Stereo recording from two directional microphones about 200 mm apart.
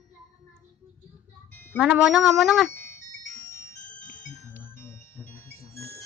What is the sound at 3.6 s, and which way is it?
Music, 15° left (ahead or behind).